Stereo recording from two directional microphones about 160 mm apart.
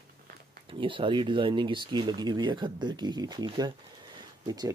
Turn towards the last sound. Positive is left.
turn(degrees=-25)  # may be behind; listen again after turning